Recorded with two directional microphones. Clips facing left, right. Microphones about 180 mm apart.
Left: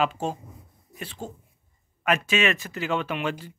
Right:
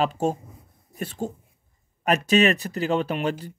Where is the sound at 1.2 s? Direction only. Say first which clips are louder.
Right 7 dB; 20° right (ahead or behind).